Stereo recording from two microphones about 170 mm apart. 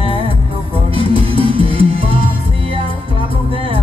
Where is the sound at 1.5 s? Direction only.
30° right (ahead or behind).